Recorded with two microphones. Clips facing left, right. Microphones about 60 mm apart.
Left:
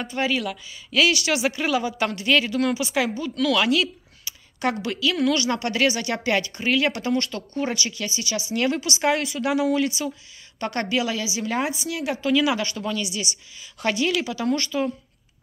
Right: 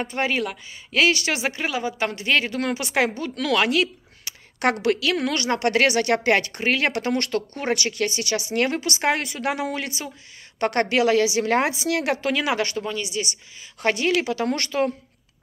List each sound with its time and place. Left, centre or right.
0.0 s speech: right
4.2 s a woman's voice: right
10.6 s a woman's voice: right
12.2 s a woman's voice: right
12.8 s speech: right